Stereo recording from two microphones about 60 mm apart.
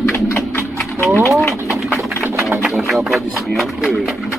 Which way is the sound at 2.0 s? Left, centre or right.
Right.